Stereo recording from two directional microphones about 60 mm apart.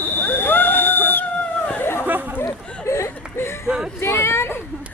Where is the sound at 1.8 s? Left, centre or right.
Left.